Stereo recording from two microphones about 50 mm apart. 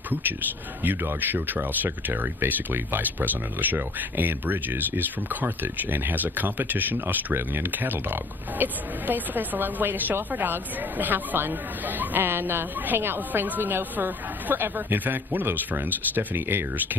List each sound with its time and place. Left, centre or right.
0.8 s speech: right